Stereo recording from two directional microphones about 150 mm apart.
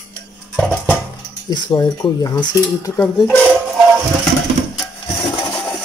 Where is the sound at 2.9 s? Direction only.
15° left (ahead or behind).